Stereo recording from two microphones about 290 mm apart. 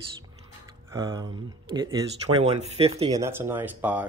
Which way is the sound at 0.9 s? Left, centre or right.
Centre.